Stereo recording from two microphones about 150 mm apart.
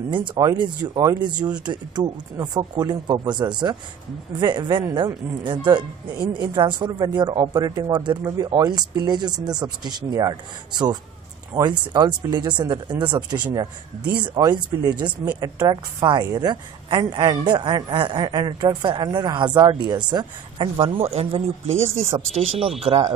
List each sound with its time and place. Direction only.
0.1 s a woman's voice: 30° right (ahead or behind)